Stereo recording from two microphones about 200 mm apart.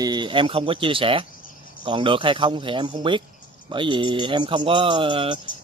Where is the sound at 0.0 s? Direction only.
20° right (ahead or behind).